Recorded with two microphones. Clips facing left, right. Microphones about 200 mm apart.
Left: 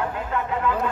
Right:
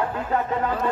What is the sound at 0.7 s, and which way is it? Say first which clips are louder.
Speech: left 3 dB; 40° right (ahead or behind).